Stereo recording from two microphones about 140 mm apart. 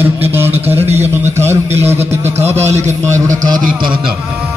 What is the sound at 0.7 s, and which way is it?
Speech, 50° right (ahead or behind).